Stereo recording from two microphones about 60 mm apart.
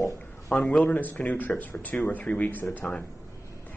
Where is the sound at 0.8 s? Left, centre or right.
Left.